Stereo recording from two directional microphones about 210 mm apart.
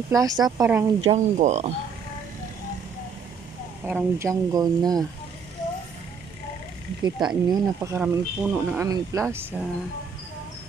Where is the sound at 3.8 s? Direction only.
10° right (ahead or behind).